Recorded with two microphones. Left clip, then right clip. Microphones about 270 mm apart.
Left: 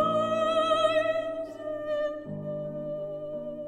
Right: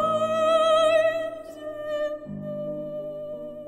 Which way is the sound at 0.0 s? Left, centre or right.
Right.